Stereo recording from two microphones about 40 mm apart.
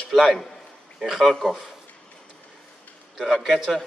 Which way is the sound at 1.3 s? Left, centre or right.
Centre.